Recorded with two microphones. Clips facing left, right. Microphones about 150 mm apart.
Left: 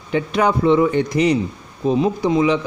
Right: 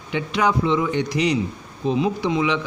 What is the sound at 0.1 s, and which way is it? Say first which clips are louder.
Speech: left 3 dB; 50° left (ahead or behind).